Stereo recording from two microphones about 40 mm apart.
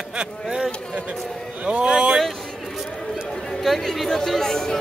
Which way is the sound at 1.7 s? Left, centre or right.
Right.